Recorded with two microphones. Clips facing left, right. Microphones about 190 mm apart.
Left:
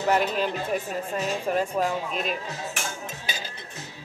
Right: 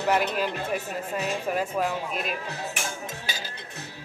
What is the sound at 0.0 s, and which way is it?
Speech, centre (ahead or behind).